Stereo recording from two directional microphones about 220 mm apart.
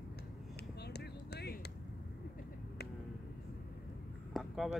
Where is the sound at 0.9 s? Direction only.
45° left (ahead or behind).